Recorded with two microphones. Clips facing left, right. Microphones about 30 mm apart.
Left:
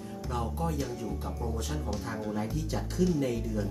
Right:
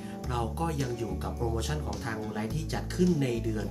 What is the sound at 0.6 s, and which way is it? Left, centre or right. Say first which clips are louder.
Speech: right 1 dB; right.